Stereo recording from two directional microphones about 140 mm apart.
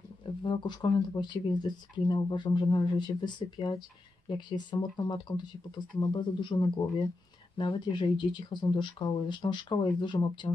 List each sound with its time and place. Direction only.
0.4 s speech: 35° left (ahead or behind)